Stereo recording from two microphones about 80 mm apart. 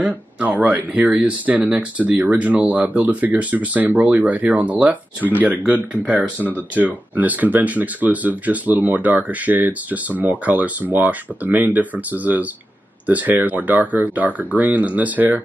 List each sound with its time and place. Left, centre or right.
0.0 s speech: centre